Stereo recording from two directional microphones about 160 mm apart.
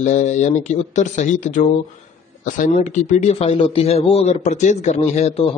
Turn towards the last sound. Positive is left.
turn(degrees=40)  # may be behind; listen again after turning